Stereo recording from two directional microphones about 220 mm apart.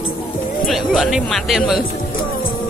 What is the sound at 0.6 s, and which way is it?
Speech, centre (ahead or behind).